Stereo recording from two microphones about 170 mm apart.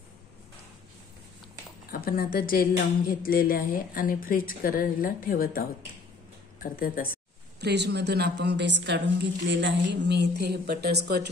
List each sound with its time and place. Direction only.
1.9 s speech: 60° left (ahead or behind)
7.6 s a woman's voice: 80° right